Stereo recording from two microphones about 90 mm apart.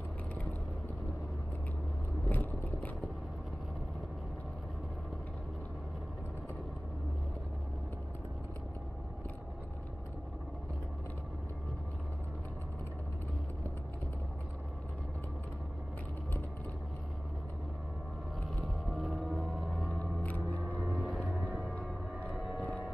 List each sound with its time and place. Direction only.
2.2 s vehicle: 20° left (ahead or behind)
18.6 s vehicle: 5° right (ahead or behind)
19.4 s music: centre (ahead or behind)
19.9 s a sound: 15° left (ahead or behind)
20.9 s vehicle: centre (ahead or behind)
22.3 s a sound: 5° right (ahead or behind)